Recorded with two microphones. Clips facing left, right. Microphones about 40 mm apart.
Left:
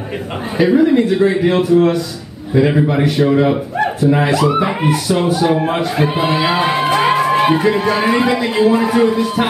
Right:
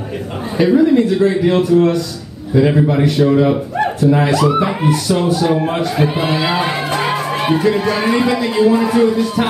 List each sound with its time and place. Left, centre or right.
0.6 s a man's voice: centre